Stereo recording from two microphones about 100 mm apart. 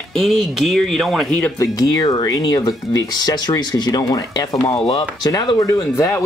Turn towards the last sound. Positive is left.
turn(degrees=30)  # may be behind; listen again after turning